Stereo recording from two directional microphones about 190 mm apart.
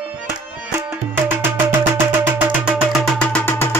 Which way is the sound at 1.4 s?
10° right (ahead or behind).